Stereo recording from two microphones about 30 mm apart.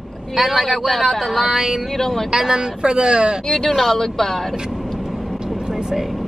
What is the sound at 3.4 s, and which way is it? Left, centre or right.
Speech, centre.